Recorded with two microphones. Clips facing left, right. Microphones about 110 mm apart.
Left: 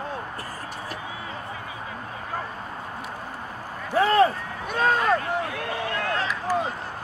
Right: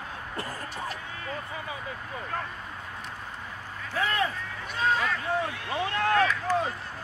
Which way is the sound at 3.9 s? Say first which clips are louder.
Left 9 dB; 35° left (ahead or behind).